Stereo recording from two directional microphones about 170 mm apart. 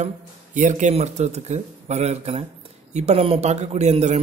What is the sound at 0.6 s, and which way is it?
A man's voice, 45° right (ahead or behind).